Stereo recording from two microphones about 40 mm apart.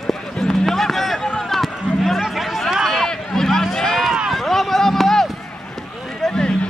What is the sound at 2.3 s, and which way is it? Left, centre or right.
Music, centre.